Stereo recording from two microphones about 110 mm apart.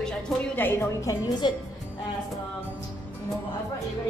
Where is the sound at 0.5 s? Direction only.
20° left (ahead or behind); by 1.5 s 40° left (ahead or behind).